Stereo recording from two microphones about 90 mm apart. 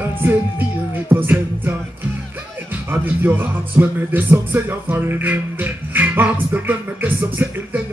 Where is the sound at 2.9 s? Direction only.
20° right (ahead or behind).